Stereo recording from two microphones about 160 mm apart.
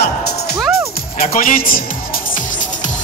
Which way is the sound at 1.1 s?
60° left (ahead or behind).